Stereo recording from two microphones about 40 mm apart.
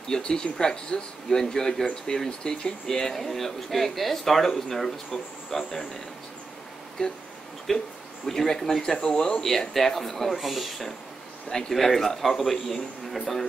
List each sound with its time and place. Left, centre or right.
0.1 s a man's voice: centre
7.7 s speech: centre
9.4 s a man's voice: centre